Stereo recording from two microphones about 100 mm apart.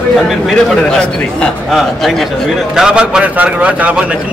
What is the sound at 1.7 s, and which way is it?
A man's voice, centre (ahead or behind).